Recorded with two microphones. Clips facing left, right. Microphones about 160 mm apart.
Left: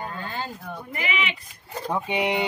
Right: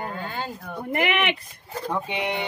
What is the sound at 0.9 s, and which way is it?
Speech, 65° right (ahead or behind).